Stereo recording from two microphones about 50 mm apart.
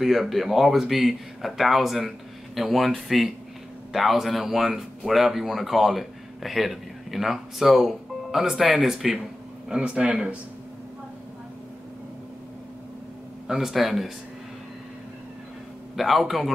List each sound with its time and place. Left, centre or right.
0.0 s speech: centre
9.7 s speech: right
13.5 s speech: centre
16.0 s speech: centre